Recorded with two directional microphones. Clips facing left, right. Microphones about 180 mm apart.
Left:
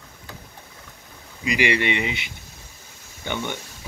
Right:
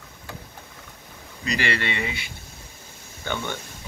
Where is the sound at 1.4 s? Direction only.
15° left (ahead or behind).